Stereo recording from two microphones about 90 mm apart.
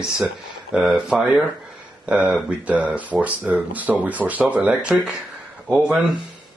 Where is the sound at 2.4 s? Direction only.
15° right (ahead or behind).